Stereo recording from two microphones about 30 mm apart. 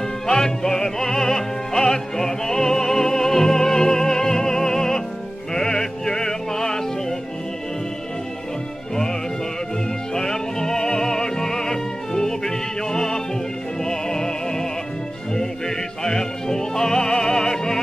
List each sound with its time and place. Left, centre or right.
0.3 s music: centre
10.1 s music: centre